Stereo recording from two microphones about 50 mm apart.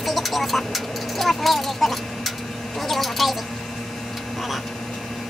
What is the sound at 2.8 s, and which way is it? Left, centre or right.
Speech, centre.